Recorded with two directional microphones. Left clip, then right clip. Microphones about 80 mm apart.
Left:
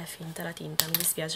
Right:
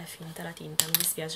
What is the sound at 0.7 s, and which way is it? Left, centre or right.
Speech, centre.